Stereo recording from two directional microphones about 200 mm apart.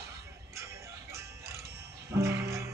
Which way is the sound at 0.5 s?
15° right (ahead or behind).